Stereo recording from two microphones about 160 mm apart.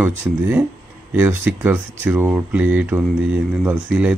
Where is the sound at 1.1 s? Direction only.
10° right (ahead or behind).